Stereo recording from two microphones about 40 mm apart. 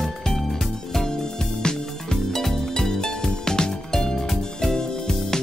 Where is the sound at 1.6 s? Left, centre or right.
Centre.